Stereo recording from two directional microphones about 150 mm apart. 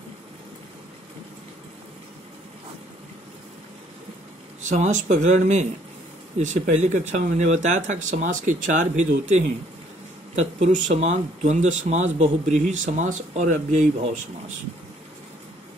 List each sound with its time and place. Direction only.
4.6 s speech: 50° right (ahead or behind)